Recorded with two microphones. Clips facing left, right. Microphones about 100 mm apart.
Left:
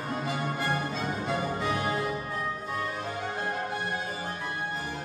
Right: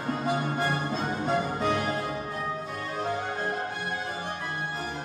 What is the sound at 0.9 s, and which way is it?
Music, 40° right (ahead or behind).